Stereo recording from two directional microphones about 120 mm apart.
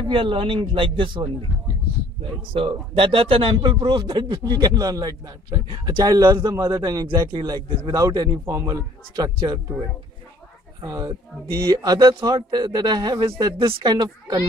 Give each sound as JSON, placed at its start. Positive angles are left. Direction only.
{"t": 0.0, "sound": "a man's voice", "side_deg": -45}
{"t": 2.5, "sound": "speech", "side_deg": -50}
{"t": 10.8, "sound": "speech", "side_deg": -30}